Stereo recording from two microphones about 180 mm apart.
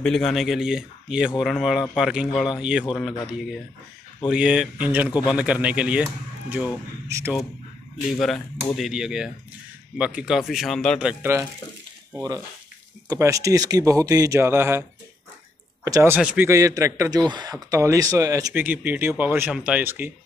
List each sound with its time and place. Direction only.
0.0 s speech: centre (ahead or behind)
7.1 s speech: 15° right (ahead or behind)
8.1 s speech: centre (ahead or behind)
13.1 s speech: 15° right (ahead or behind)